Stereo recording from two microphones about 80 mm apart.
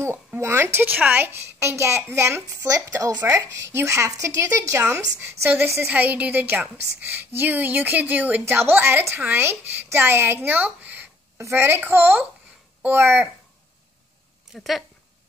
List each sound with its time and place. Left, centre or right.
0.4 s a woman's voice: right
2.6 s a woman's voice: right
14.5 s speech: centre